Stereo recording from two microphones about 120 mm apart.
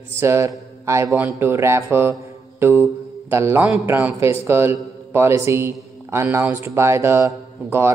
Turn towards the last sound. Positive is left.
turn(degrees=-20)  # may be behind; listen again after turning